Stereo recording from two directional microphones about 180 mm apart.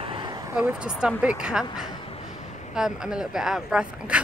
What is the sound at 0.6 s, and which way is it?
A woman's voice, 5° right (ahead or behind).